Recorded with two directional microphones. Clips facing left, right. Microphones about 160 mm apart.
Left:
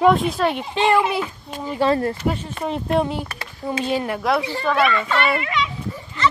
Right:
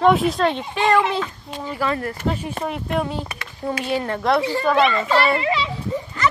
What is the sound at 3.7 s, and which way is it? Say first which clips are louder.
Speech: left 1 dB; 15° left (ahead or behind).